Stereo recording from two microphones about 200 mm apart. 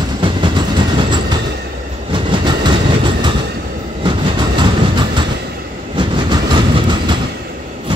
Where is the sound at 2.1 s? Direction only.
25° right (ahead or behind).